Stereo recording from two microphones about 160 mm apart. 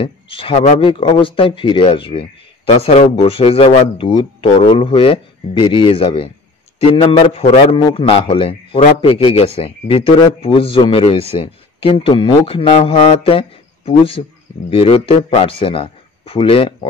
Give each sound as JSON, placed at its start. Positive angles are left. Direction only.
{"t": 0.0, "sound": "speech", "side_deg": 35}